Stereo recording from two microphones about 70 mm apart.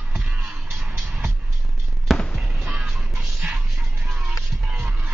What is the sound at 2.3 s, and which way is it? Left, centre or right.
Fireworks, centre.